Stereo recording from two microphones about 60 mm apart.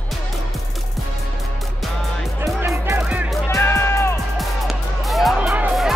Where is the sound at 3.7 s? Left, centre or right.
Left.